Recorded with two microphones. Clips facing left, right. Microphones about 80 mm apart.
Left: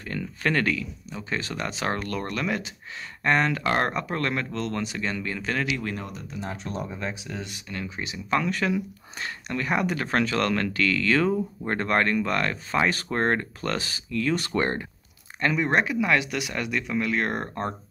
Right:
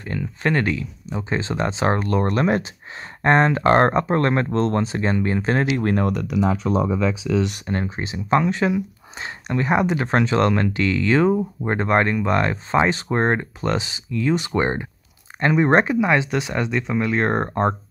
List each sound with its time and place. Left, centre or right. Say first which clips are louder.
0.4 s speech: right 3 dB; right
7.6 s speech: right 8 dB; right; by 14.9 s centre
15.4 s speech: right 7 dB; right